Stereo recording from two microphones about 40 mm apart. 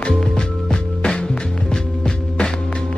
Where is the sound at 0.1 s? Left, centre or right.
Centre.